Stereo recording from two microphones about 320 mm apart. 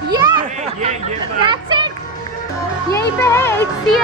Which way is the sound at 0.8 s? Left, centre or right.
Centre.